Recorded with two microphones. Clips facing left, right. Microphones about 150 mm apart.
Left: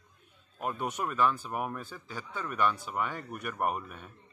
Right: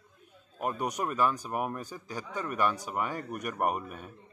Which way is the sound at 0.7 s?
40° right (ahead or behind).